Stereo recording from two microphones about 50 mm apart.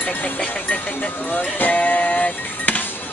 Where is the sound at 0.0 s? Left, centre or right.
Left.